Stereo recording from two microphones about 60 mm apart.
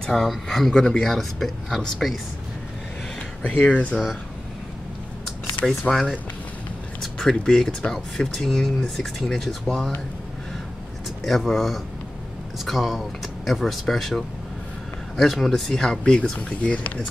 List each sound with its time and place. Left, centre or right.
0.0 s speech: centre
0.7 s speech: centre
1.0 s speech: centre
3.6 s speech: centre
5.7 s speech: centre
7.0 s speech: centre
11.2 s speech: centre; by 17.0 s left